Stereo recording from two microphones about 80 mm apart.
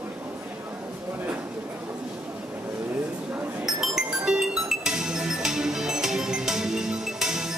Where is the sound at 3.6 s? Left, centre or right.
Centre.